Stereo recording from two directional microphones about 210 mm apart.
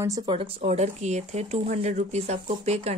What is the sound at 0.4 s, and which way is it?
Speech, 30° right (ahead or behind).